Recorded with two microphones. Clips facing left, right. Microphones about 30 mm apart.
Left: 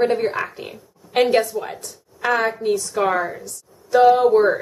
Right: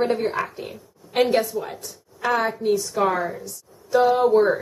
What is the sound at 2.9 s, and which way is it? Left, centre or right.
A woman's voice, centre.